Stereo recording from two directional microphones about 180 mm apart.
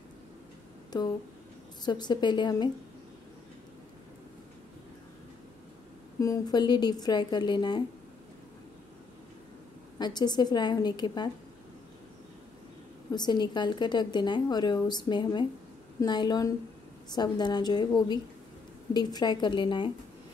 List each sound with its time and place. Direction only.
0.9 s a woman's voice: 25° left (ahead or behind)
6.1 s a woman's voice: 20° left (ahead or behind)
9.9 s a woman's voice: 25° left (ahead or behind)
13.1 s a woman's voice: 25° left (ahead or behind)